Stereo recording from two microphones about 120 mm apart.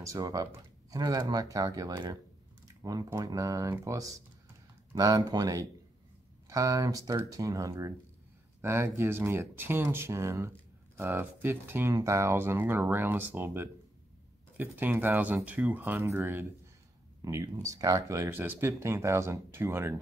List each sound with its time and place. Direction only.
0.0 s speech: 30° right (ahead or behind)
17.2 s speech: 30° right (ahead or behind)